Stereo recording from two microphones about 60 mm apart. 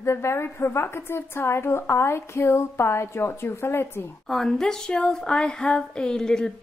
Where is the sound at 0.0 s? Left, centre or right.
Left.